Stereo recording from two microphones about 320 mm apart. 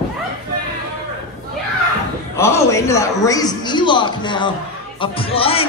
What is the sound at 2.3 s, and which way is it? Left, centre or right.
A man's voice, centre.